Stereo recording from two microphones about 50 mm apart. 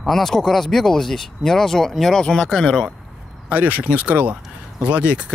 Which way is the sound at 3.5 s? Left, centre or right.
Right.